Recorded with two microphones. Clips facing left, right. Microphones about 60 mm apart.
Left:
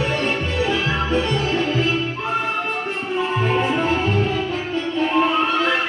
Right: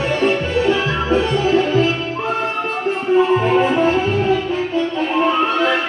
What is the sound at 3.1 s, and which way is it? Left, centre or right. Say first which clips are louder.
Music: right 7 dB; centre.